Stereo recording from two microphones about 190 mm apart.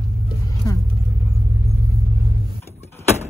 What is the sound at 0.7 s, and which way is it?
Speech, 15° left (ahead or behind).